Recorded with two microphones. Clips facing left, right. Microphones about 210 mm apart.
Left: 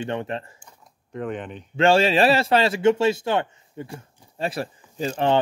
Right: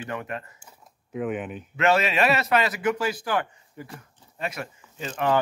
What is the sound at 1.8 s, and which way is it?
Speech, 30° left (ahead or behind).